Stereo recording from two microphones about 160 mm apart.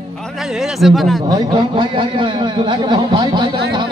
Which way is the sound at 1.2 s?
25° right (ahead or behind).